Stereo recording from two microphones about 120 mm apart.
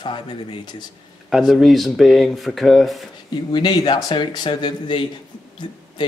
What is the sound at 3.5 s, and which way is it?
A man's voice, 40° left (ahead or behind).